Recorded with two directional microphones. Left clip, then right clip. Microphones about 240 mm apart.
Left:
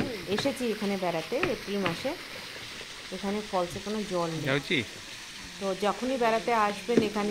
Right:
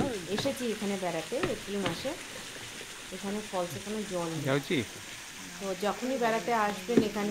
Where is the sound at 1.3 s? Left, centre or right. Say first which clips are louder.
Left 3 dB; left.